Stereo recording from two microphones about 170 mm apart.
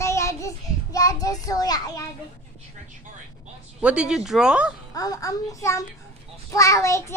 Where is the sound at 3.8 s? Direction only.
5° right (ahead or behind).